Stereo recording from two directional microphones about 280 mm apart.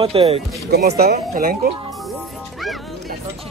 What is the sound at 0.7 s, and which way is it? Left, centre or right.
Speech, right.